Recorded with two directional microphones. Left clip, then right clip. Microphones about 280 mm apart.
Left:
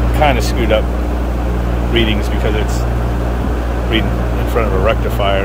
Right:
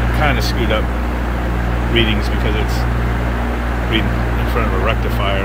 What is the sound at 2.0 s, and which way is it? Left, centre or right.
Speech, centre.